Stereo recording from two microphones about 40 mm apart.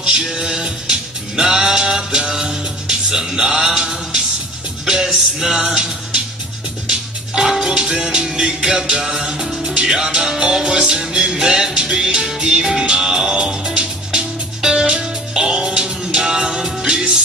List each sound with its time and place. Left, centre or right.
0.0 s music: centre